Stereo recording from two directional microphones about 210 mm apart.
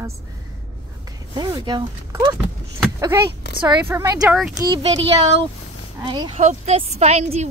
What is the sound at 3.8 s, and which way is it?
Speech, 15° right (ahead or behind).